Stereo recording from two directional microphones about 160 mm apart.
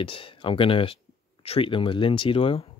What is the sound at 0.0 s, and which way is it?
Speech, 35° left (ahead or behind).